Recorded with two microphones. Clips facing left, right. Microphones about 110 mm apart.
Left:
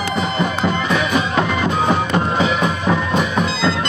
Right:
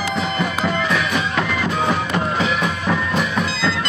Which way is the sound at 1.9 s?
Centre (ahead or behind).